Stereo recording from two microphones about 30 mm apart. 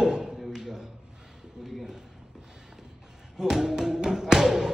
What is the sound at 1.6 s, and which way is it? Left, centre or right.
Speech, centre.